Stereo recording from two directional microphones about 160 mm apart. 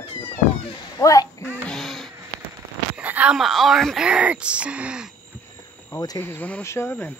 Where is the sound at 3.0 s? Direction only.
10° right (ahead or behind).